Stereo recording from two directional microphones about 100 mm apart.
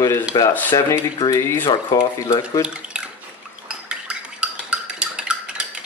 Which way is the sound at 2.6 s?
10° right (ahead or behind).